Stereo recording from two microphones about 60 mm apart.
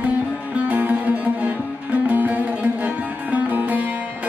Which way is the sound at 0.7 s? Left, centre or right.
Right.